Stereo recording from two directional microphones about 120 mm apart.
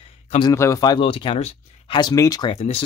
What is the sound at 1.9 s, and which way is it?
Speech, 35° left (ahead or behind).